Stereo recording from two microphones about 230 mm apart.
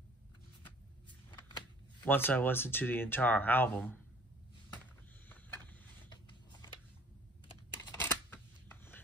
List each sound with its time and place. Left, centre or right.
2.0 s speech: centre
6.0 s a sound: centre
7.4 s camera: centre